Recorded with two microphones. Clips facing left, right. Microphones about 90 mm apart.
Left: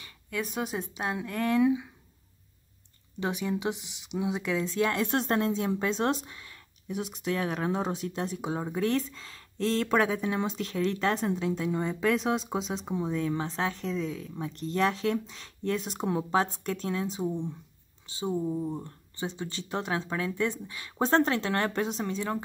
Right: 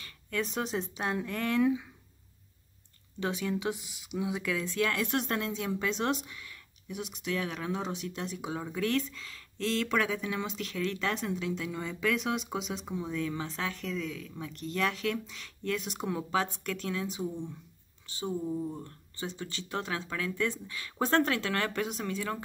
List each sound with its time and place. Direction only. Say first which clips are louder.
0.0 s speech: even; 10° left (ahead or behind)
3.2 s speech: left 2 dB; 15° left (ahead or behind)